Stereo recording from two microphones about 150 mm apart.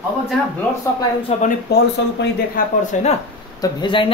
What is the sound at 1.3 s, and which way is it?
Speech, 45° left (ahead or behind).